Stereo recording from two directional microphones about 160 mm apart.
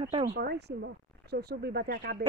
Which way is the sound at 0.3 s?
85° right.